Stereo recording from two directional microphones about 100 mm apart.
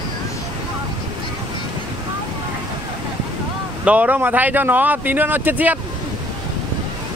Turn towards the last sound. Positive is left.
turn(degrees=-15)  # may be behind; listen again after turning